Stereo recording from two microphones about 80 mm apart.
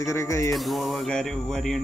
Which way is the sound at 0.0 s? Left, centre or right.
Left.